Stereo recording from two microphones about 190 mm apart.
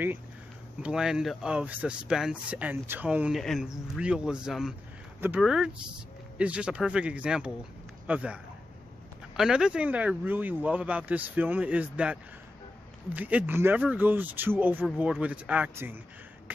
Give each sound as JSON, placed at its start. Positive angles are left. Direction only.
{"t": 0.8, "sound": "speech", "side_deg": -5}
{"t": 9.4, "sound": "speech", "side_deg": -5}
{"t": 16.5, "sound": "a sound", "side_deg": -10}